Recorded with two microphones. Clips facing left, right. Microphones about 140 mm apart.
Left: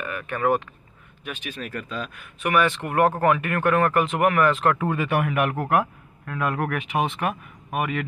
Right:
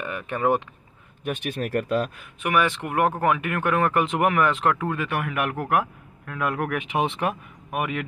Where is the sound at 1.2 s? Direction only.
55° right (ahead or behind).